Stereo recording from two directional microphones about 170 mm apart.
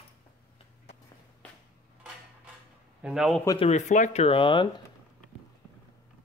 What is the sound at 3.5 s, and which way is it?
Speech, 40° left (ahead or behind).